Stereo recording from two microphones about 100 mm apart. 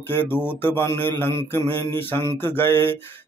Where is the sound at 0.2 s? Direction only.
20° left (ahead or behind).